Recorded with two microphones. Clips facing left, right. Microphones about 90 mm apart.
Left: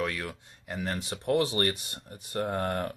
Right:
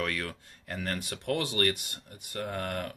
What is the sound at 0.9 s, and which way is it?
Speech, 25° left (ahead or behind).